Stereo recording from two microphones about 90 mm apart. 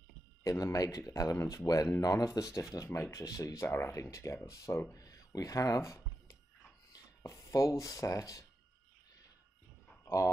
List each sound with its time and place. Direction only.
0.4 s speech: 40° left (ahead or behind)
4.9 s a sound: 40° left (ahead or behind)
10.0 s speech: 35° left (ahead or behind)